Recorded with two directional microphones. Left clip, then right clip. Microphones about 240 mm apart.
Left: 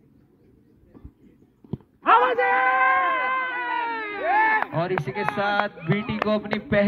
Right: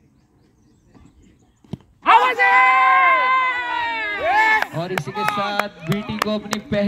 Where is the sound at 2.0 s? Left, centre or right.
Right.